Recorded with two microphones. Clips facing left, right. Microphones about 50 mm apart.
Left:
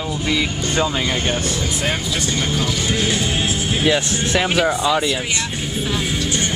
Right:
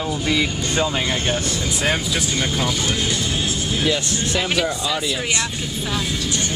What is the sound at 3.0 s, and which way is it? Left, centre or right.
Speech, left.